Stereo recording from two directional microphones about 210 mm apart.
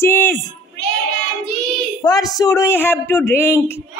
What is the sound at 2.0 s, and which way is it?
Speech, 15° left (ahead or behind).